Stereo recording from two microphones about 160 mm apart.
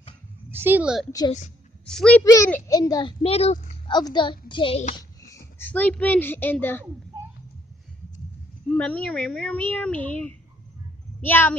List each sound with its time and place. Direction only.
0.5 s speech: 10° right (ahead or behind)
1.9 s a child's voice: 5° left (ahead or behind)
2.2 s a child's voice: 20° left (ahead or behind); by 3.9 s 40° left (ahead or behind)
3.9 s a child's voice: 30° left (ahead or behind)
4.9 s speech: 20° left (ahead or behind)
8.6 s speech: 10° left (ahead or behind)